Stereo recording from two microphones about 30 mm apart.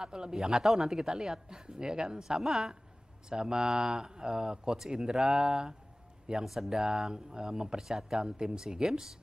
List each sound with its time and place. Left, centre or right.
0.0 s speech: right
0.4 s speech: centre
2.4 s speech: centre
3.3 s speech: right
6.4 s speech: centre
6.8 s speech: right